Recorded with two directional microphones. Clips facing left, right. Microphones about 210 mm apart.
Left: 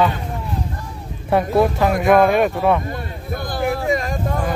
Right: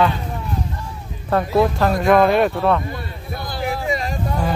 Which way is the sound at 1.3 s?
10° left (ahead or behind).